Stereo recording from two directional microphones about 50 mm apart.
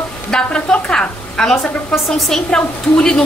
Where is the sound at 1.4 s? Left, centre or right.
Centre.